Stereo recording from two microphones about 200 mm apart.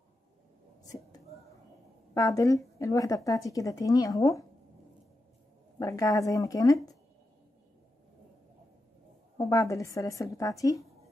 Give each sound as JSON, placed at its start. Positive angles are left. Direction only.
{"t": 2.1, "sound": "a woman's voice", "side_deg": 15}
{"t": 5.8, "sound": "a woman's voice", "side_deg": 15}
{"t": 9.4, "sound": "a woman's voice", "side_deg": 15}